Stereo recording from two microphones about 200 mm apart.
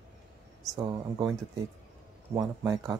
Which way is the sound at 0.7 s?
20° right (ahead or behind).